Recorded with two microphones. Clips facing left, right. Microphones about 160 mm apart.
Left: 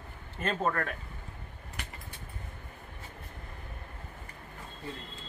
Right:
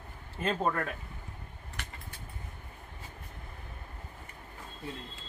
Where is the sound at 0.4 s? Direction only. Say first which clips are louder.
Even; 10° right (ahead or behind).